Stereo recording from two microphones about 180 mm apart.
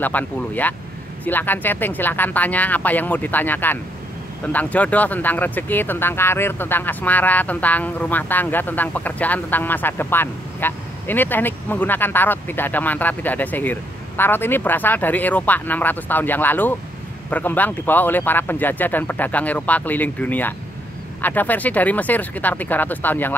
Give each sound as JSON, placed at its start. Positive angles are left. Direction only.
{"t": 0.0, "sound": "speech", "side_deg": 10}